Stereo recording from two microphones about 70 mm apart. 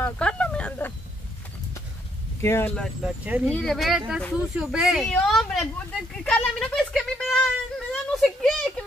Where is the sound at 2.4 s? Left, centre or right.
Left.